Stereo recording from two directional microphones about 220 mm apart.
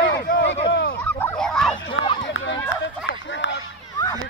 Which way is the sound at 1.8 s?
55° left (ahead or behind).